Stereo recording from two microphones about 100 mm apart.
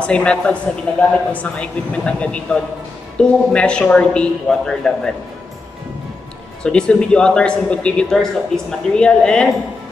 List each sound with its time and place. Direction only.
0.0 s speech: 10° left (ahead or behind)
6.6 s speech: 10° left (ahead or behind)